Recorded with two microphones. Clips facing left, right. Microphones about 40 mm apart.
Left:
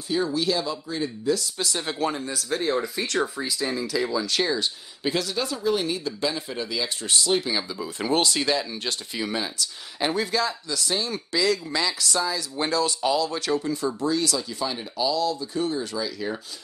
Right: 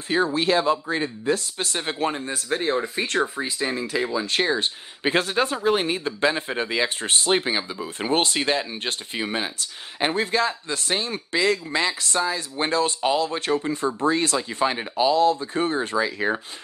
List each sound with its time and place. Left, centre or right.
0.1 s speech: right